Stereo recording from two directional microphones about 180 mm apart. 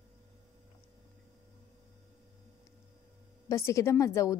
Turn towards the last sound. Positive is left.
turn(degrees=15)  # may be behind; listen again after turning